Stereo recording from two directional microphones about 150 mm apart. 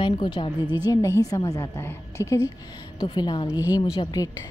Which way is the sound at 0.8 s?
20° left (ahead or behind).